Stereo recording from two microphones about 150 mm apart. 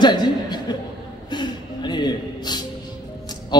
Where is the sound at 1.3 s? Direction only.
30° left (ahead or behind).